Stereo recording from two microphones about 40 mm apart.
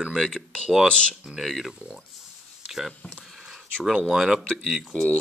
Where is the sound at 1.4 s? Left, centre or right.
Centre.